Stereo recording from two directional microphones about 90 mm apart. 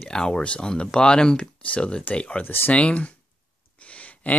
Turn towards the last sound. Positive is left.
turn(degrees=15)  # may be behind; listen again after turning